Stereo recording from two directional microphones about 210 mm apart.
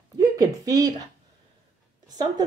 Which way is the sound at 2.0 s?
20° right (ahead or behind).